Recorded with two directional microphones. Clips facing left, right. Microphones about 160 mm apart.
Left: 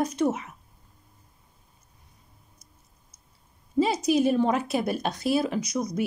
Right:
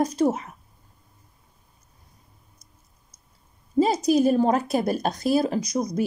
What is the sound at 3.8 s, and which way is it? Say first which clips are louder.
Speech: right 3 dB; 40° right (ahead or behind).